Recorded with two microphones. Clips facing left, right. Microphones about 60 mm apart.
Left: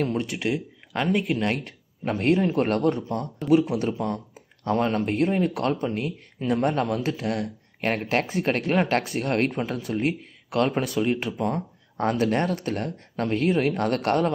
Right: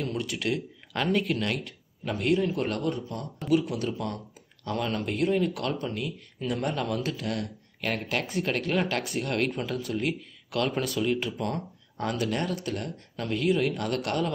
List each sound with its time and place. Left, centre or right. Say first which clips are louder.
0.0 s speech: left 5 dB; left
1.5 s speech: left 3 dB; left
11.3 s speech: left 5 dB; centre
12.0 s speech: left 6 dB; left